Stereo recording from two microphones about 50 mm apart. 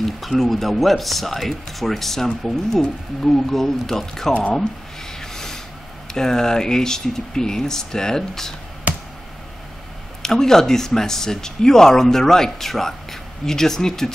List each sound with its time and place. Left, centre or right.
0.0 s speech: centre
4.3 s speech: left
5.2 s vehicle: centre
6.1 s speech: centre
10.2 s speech: centre